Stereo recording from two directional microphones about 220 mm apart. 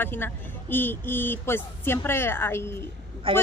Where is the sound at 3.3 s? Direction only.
25° right (ahead or behind).